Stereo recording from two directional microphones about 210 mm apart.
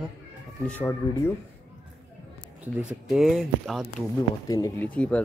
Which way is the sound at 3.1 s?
Centre (ahead or behind).